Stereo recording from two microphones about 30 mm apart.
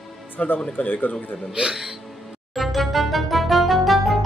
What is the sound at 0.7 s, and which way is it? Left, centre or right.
Speech, left.